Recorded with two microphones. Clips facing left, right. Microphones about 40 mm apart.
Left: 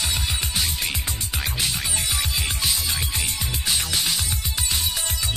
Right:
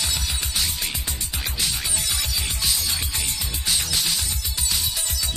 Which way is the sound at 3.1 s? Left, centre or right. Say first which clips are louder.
Left 2 dB; left.